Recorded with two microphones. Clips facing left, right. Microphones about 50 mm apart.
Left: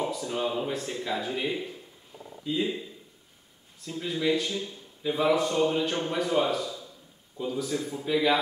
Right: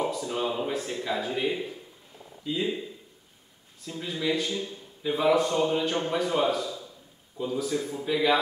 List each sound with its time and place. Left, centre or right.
0.0 s a man's voice: centre
3.8 s a man's voice: centre